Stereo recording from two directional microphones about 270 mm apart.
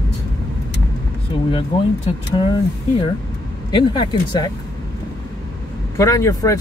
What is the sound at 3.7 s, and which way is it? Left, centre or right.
Speech, centre.